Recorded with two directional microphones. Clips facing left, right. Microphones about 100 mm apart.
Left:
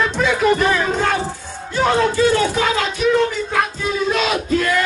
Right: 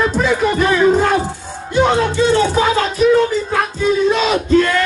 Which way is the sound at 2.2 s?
25° right (ahead or behind).